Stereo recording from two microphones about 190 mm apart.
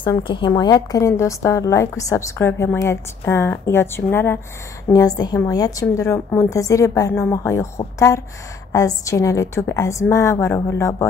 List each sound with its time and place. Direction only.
0.0 s a woman's voice: 25° left (ahead or behind)